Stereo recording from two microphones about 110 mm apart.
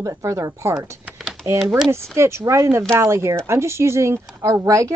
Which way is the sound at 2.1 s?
25° right (ahead or behind).